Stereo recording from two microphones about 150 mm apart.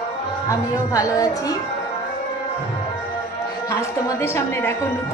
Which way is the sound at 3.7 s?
15° left (ahead or behind).